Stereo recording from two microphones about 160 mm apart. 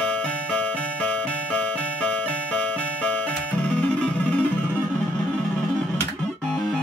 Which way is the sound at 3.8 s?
10° left (ahead or behind).